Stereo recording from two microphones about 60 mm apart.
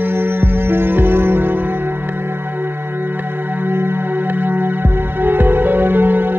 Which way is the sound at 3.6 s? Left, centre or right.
Right.